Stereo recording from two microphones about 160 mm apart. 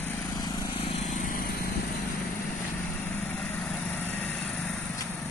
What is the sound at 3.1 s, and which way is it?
Vehicle, 10° left (ahead or behind).